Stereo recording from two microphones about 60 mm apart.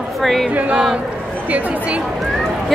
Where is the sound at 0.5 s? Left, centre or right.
Right.